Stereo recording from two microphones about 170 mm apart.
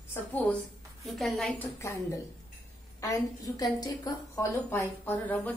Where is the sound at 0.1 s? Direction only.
10° left (ahead or behind).